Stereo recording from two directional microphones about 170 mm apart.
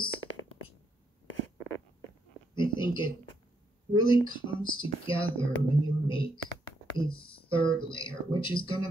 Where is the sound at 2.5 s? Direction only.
30° left (ahead or behind).